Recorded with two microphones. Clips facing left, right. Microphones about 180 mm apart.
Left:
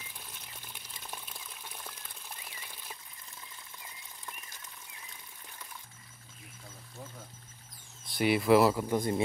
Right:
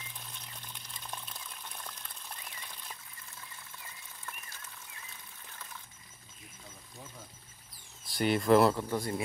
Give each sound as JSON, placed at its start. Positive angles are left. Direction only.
{"t": 0.2, "sound": "water", "side_deg": 10}
{"t": 4.3, "sound": "a sound", "side_deg": 15}
{"t": 8.0, "sound": "speech", "side_deg": 0}
{"t": 8.8, "sound": "a man's voice", "side_deg": 15}